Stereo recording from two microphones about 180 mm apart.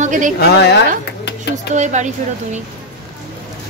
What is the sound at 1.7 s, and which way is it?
Speech, 40° right (ahead or behind).